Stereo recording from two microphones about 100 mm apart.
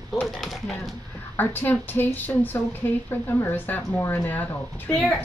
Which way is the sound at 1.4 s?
20° left (ahead or behind).